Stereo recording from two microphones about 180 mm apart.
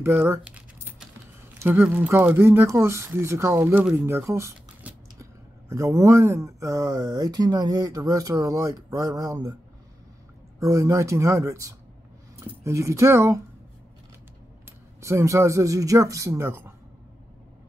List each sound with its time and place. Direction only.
0.0 s typing: 15° right (ahead or behind)
1.6 s speech: 10° right (ahead or behind)
10.6 s speech: 15° right (ahead or behind)
15.0 s speech: 15° right (ahead or behind)